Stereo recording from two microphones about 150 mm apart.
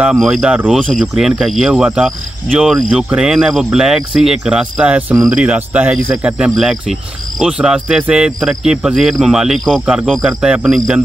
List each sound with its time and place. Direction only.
0.0 s speech: centre (ahead or behind)